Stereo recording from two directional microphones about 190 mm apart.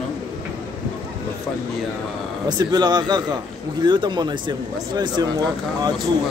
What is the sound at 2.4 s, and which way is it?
A man's voice, 20° right (ahead or behind).